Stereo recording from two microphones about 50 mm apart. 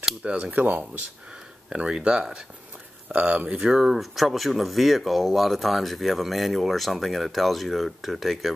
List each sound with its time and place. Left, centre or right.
0.2 s speech: right
0.5 s speech: right
1.7 s speech: centre
3.5 s speech: centre